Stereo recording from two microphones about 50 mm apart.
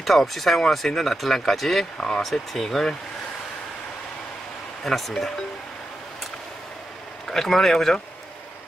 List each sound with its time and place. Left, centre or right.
0.0 s speech: centre
2.0 s speech: centre
2.2 s speech: centre
4.8 s speech: centre
7.2 s speech: centre